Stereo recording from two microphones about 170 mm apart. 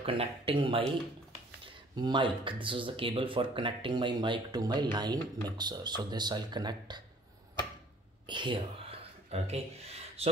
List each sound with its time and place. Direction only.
0.0 s speech: 35° right (ahead or behind)
2.0 s speech: 25° right (ahead or behind)
8.3 s a sound: 25° right (ahead or behind)
10.2 s speech: 35° right (ahead or behind)